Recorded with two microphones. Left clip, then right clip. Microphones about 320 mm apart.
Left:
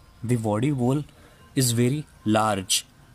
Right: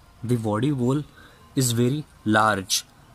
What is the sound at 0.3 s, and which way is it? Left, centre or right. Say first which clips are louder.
Speech: even; centre.